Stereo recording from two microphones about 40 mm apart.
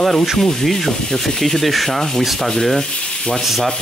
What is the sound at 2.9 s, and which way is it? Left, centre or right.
Sanding, left.